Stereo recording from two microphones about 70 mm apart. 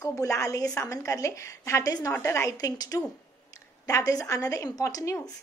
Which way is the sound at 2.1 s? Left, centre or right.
Left.